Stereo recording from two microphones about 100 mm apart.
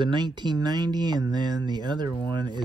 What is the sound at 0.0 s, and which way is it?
Speech, 50° right (ahead or behind).